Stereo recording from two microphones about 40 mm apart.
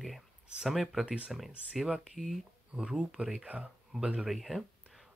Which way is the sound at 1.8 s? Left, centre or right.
Centre.